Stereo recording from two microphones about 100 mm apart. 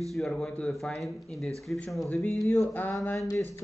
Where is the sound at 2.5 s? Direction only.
20° left (ahead or behind).